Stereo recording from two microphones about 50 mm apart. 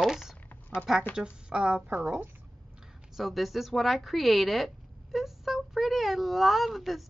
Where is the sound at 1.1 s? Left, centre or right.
Centre.